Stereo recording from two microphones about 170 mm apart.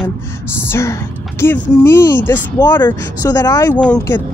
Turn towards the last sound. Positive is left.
turn(degrees=15)  # may be behind; listen again after turning